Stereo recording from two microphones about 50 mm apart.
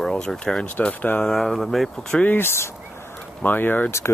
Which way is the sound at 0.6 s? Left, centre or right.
Left.